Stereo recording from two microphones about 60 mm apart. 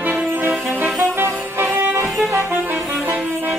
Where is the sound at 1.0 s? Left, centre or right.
Right.